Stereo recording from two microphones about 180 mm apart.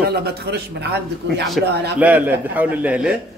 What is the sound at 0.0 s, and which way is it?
A man's voice, 65° right (ahead or behind).